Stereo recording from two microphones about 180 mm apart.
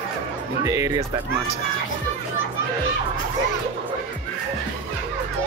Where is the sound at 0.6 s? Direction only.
20° right (ahead or behind).